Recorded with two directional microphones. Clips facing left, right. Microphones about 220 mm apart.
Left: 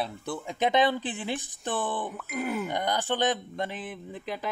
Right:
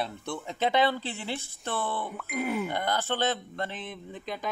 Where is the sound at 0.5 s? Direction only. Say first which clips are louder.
Left 1 dB; 15° left (ahead or behind).